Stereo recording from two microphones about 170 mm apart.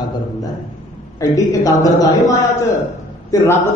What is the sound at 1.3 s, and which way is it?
Speech, 20° left (ahead or behind).